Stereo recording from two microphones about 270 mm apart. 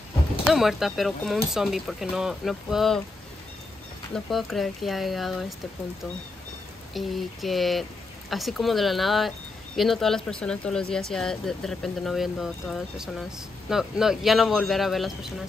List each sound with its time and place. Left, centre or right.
0.5 s speech: centre
4.1 s speech: centre
6.9 s speech: centre